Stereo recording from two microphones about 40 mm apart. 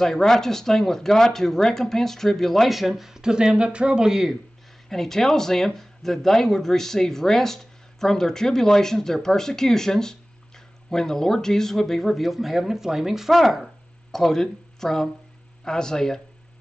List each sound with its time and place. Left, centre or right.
0.0 s speech: centre
4.8 s speech: centre
13.3 s speech: centre